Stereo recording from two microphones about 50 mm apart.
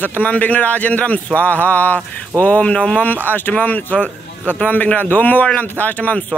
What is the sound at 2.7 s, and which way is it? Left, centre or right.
Speech, left.